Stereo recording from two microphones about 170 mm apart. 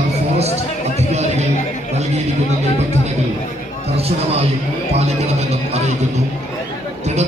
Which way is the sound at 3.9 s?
35° right (ahead or behind).